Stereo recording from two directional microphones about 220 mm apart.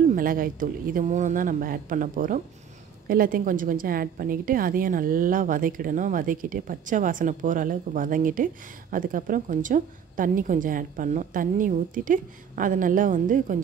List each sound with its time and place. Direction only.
0.1 s a woman's voice: 40° right (ahead or behind)